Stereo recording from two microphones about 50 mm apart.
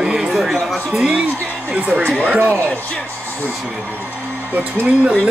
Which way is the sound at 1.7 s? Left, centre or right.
Right.